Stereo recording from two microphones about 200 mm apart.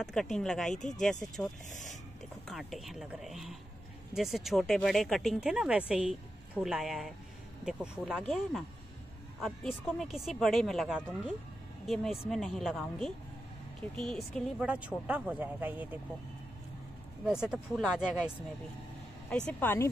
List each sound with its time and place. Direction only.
0.0 s speech: centre (ahead or behind)
0.7 s speech: 35° left (ahead or behind)
1.2 s speech: centre (ahead or behind)
17.2 s speech: 5° right (ahead or behind)